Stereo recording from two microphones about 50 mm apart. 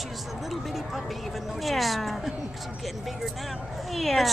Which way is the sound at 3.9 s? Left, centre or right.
Centre.